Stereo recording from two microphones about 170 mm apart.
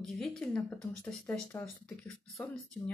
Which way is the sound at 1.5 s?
20° left (ahead or behind).